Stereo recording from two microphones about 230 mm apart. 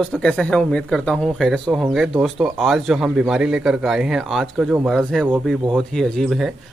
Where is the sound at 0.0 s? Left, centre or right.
Centre.